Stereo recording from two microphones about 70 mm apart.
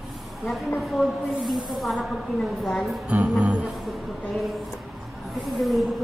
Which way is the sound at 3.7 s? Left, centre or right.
Centre.